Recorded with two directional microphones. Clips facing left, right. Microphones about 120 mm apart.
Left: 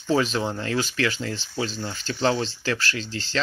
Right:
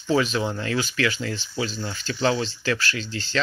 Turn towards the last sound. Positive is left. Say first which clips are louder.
# even
turn(degrees=30)  # may be behind; listen again after turning